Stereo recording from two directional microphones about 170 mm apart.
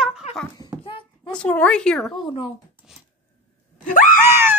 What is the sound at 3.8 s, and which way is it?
Screaming, 55° left (ahead or behind).